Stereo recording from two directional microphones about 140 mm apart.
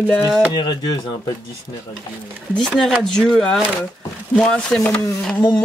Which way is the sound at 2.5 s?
5° left (ahead or behind).